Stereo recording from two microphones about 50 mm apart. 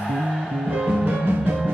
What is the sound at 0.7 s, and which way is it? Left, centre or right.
Music, right.